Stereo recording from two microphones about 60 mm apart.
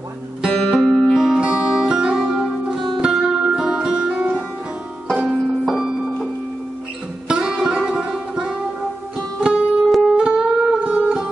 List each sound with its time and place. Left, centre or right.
0.7 s music: centre
1.1 s music: centre
1.4 s music: centre
5.1 s banjo: centre
5.7 s music: centre
7.2 s music: centre
9.8 s music: centre
10.1 s music: centre